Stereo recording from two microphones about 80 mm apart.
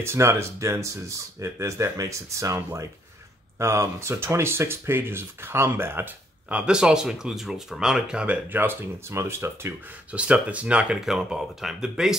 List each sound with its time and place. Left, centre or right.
0.0 s speech: right
6.5 s speech: centre
8.5 s speech: right
10.1 s speech: centre